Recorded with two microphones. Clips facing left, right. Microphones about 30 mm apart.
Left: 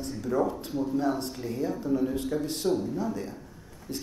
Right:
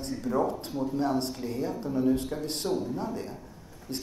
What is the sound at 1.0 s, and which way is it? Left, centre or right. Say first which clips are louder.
Speech: right 4 dB; right.